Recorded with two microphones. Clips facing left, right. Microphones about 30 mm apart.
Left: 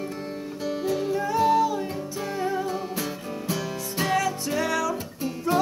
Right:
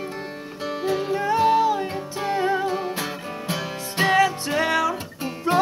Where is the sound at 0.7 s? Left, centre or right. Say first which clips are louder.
Right 2 dB; right.